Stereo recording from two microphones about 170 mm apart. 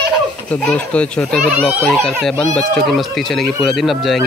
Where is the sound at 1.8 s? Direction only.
5° left (ahead or behind).